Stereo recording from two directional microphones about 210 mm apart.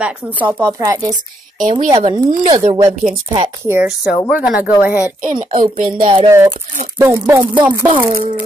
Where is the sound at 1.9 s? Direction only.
20° right (ahead or behind).